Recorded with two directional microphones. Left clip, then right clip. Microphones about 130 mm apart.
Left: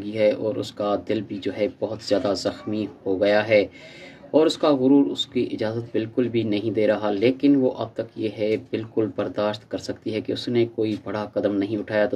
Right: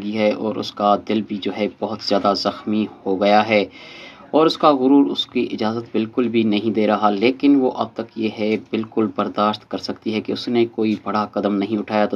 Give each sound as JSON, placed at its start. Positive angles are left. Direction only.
{"t": 0.0, "sound": "speech", "side_deg": -20}